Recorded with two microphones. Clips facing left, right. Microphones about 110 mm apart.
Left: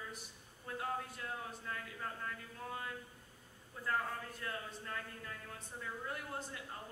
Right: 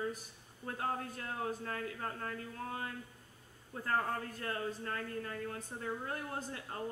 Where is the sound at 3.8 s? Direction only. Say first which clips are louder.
Right 4 dB; 55° right (ahead or behind).